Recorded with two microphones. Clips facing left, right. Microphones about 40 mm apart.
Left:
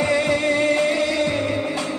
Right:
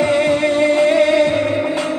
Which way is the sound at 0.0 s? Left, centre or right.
Right.